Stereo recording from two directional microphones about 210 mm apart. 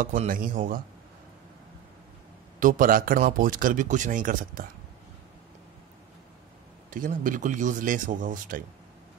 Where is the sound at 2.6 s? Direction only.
40° right (ahead or behind).